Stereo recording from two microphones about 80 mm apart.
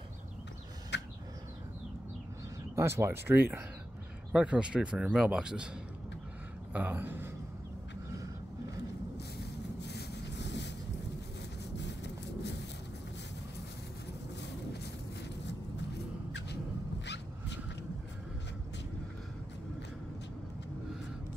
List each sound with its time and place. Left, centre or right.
2.7 s speech: right
4.3 s speech: centre
6.7 s speech: right